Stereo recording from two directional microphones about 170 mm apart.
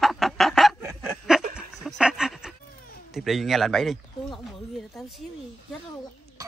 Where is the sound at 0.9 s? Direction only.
5° right (ahead or behind).